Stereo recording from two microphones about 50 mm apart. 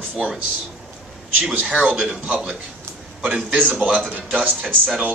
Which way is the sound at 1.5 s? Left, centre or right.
Right.